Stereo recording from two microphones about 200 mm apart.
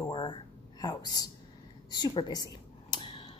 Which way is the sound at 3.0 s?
25° left (ahead or behind).